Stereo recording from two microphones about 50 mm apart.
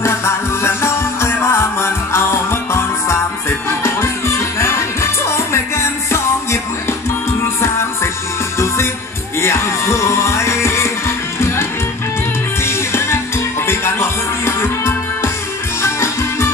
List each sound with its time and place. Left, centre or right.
0.0 s music: left
9.4 s music: left
12.6 s music: left